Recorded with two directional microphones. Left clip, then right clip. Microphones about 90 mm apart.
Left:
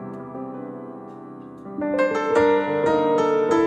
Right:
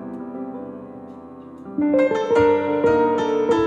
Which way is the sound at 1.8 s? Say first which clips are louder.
Right 3 dB; 20° left (ahead or behind).